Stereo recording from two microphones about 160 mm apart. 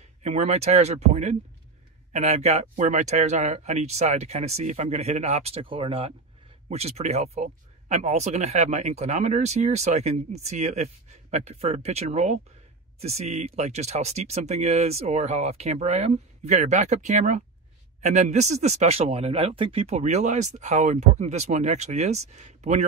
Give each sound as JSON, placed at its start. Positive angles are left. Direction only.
{"t": 0.2, "sound": "speech", "side_deg": -45}